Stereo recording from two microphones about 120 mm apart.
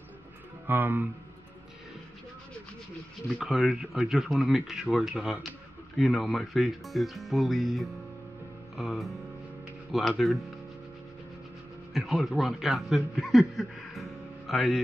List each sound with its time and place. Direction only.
0.7 s speech: 15° right (ahead or behind)
3.3 s speech: centre (ahead or behind)
11.9 s a man's voice: centre (ahead or behind)